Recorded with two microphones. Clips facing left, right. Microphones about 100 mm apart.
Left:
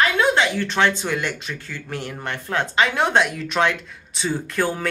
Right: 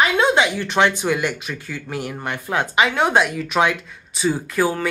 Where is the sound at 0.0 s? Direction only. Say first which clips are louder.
Right 2 dB; 15° right (ahead or behind).